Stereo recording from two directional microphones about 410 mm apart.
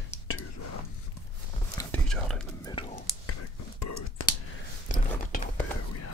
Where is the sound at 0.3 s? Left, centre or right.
Left.